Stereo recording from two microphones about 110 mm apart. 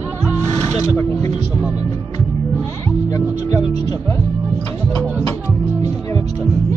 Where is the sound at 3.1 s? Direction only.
30° left (ahead or behind).